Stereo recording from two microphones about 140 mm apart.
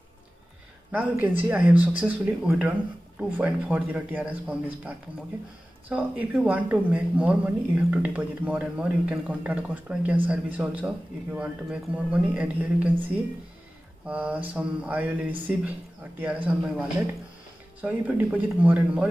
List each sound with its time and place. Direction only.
0.9 s speech: 10° right (ahead or behind)
14.0 s speech: 10° right (ahead or behind)